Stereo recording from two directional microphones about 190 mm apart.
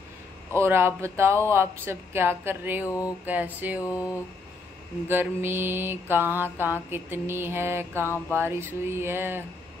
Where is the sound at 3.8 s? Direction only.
20° left (ahead or behind).